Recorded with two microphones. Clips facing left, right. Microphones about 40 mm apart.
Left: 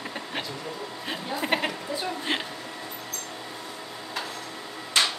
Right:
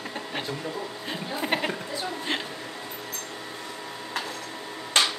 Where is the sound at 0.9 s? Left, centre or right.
Centre.